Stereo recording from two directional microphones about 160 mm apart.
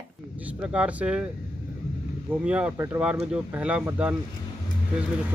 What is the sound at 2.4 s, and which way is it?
Speech, 5° right (ahead or behind).